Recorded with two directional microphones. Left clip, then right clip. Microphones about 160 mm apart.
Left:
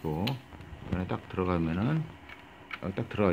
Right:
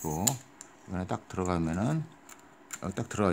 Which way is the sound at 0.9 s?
75° right (ahead or behind).